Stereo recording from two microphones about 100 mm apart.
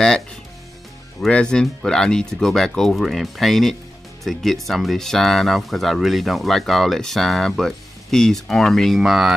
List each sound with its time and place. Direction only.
1.2 s speech: 10° left (ahead or behind)